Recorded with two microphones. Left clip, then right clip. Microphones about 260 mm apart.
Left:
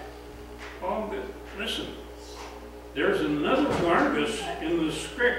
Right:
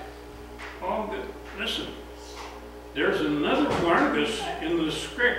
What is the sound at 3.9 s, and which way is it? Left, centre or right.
A man's voice, centre.